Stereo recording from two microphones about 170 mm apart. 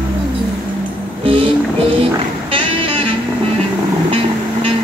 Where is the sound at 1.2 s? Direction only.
30° right (ahead or behind).